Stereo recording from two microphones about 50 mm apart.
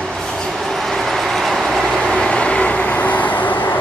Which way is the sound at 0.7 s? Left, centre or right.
Centre.